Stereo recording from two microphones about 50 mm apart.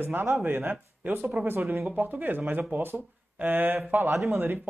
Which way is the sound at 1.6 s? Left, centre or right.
Right.